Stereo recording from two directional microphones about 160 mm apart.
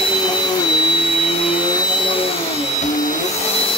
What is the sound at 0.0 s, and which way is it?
Vacuum cleaner, 30° left (ahead or behind).